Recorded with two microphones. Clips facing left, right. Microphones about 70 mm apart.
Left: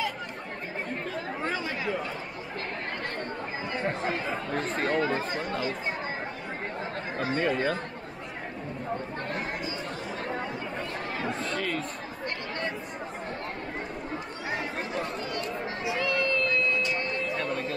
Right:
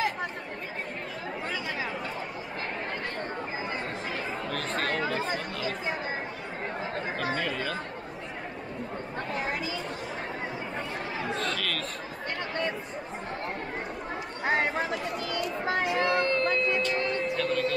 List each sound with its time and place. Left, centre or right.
4.9 s chatter: left
7.3 s chatter: left
14.4 s chatter: right
15.0 s chatter: right
15.6 s a sound: right
17.3 s music: right